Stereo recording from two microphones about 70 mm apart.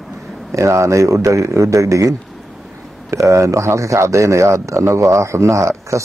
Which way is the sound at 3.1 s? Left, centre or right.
Right.